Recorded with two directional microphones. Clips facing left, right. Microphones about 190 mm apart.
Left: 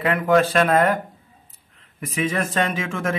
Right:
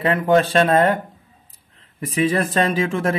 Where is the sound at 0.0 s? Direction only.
25° right (ahead or behind).